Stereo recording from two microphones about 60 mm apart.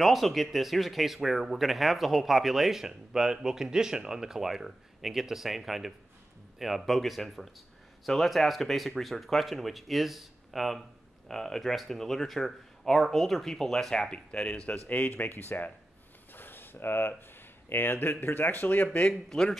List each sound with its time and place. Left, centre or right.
0.0 s speech: centre
14.7 s speech: left
16.3 s a sound: left
17.6 s speech: left
19.0 s a man's voice: centre